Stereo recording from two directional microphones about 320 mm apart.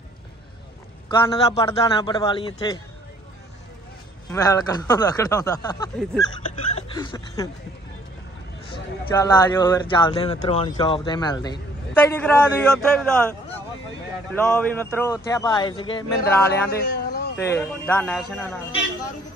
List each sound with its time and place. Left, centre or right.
1.2 s speech: centre
4.3 s speech: centre
8.7 s speech: centre
16.7 s a sound: left
17.4 s speech: centre